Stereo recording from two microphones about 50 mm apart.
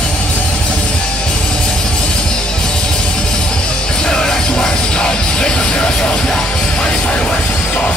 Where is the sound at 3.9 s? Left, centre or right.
Centre.